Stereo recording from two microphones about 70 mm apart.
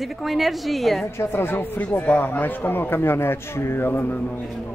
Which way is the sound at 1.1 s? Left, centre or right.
Left.